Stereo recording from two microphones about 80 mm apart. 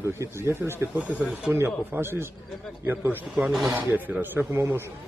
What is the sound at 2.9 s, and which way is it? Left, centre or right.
A man's voice, right.